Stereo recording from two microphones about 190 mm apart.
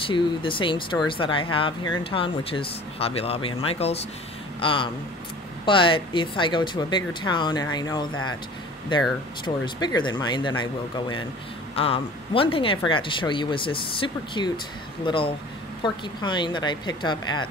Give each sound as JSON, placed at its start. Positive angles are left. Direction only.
{"t": 0.0, "sound": "speech", "side_deg": 25}
{"t": 9.4, "sound": "speech", "side_deg": 20}